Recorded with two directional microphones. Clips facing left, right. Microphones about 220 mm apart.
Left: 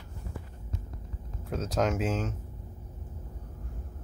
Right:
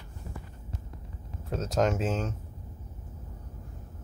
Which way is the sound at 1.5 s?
Centre (ahead or behind).